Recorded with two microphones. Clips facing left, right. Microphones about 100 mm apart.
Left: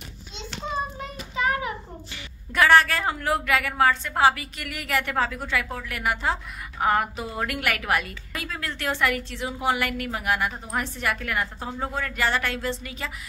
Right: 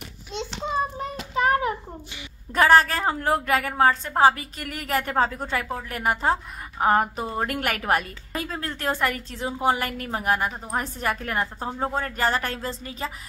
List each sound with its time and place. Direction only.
1.3 s child singing: 40° right (ahead or behind)
2.5 s a woman's voice: 35° right (ahead or behind)